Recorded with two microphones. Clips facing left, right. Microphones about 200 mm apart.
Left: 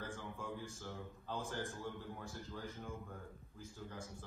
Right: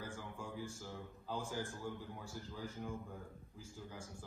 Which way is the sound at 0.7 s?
15° right (ahead or behind).